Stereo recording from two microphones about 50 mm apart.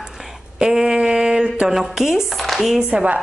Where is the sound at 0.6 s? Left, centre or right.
Centre.